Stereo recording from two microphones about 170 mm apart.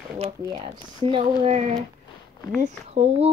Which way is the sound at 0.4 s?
20° right (ahead or behind).